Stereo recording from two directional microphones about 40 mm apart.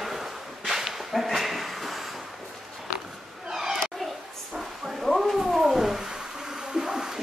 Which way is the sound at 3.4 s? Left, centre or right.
Centre.